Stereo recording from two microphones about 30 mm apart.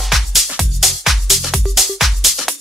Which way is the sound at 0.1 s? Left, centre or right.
Centre.